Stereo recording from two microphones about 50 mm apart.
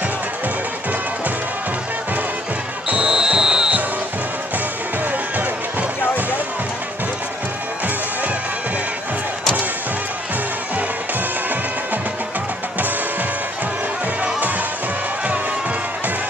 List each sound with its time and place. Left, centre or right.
2.9 s basketball bounce: centre
5.4 s music: right